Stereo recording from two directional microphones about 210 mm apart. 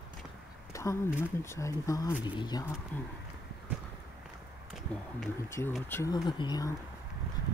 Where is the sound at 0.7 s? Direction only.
15° left (ahead or behind).